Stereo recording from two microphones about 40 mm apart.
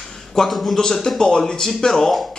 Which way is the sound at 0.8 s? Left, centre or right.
Centre.